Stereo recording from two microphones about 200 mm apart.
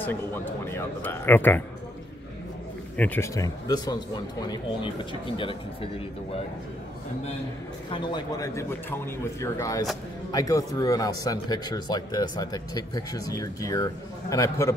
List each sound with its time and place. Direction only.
0.0 s speech: 10° left (ahead or behind)
3.0 s speech: 10° left (ahead or behind); by 6.0 s 25° left (ahead or behind)
7.9 s speech: 25° left (ahead or behind)